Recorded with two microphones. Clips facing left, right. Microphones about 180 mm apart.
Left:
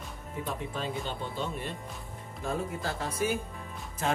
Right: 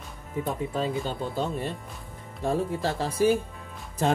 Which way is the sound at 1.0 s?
40° right (ahead or behind).